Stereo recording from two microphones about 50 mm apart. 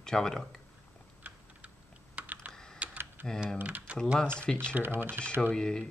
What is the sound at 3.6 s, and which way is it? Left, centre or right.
Speech, right.